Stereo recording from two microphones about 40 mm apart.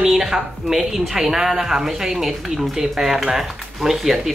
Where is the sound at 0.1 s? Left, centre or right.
Centre.